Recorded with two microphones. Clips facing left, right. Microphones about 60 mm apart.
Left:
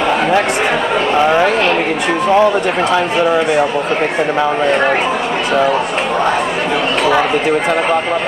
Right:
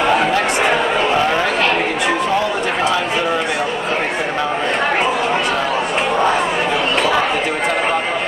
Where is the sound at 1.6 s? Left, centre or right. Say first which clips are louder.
Left 2 dB; centre.